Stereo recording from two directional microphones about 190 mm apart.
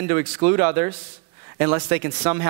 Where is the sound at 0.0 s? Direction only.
15° right (ahead or behind).